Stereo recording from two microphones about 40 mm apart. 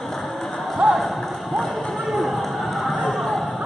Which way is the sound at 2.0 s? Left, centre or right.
Centre.